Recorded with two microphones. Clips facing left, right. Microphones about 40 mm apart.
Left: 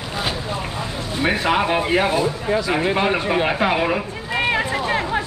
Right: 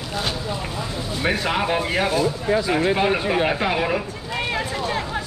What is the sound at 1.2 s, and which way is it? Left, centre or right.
Speech, centre.